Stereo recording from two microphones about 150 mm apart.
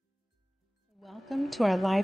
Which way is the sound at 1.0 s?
Centre (ahead or behind).